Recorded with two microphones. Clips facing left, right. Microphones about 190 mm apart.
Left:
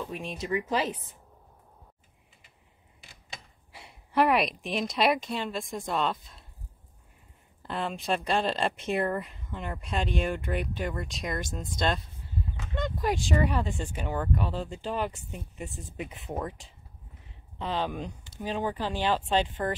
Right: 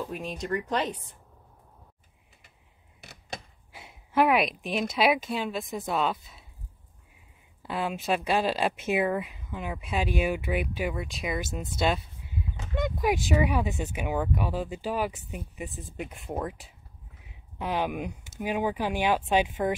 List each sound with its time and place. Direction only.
0.0 s speech: centre (ahead or behind)
3.0 s a sound: 70° right (ahead or behind)
3.7 s a woman's voice: centre (ahead or behind)
7.6 s speech: 5° right (ahead or behind)
17.2 s a sound: 10° right (ahead or behind)
18.4 s speech: 15° right (ahead or behind)